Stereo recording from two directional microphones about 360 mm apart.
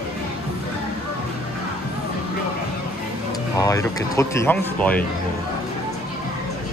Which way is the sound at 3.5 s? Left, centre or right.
Centre.